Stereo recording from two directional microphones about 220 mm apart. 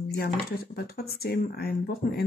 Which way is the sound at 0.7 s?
45° left (ahead or behind).